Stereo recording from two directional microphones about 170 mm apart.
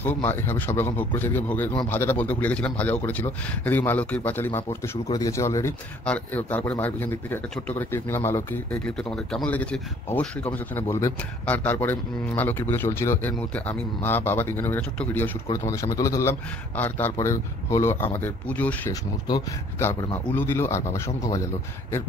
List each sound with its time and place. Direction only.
0.0 s speech: 10° left (ahead or behind)
9.1 s speech: 5° left (ahead or behind)
19.2 s speech: 25° left (ahead or behind)
19.9 s speech: 15° left (ahead or behind)